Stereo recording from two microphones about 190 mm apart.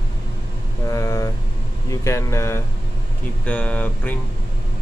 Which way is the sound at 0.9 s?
15° left (ahead or behind).